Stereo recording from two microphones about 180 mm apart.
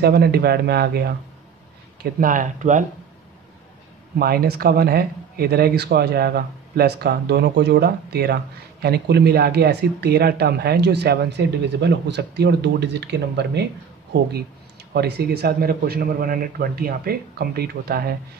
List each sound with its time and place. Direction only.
0.0 s speech: 60° right (ahead or behind)
2.1 s speech: 50° right (ahead or behind)
4.2 s speech: 55° right (ahead or behind)
15.0 s speech: 65° right (ahead or behind)